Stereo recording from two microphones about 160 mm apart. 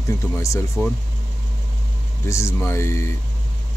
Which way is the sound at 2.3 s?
20° left (ahead or behind).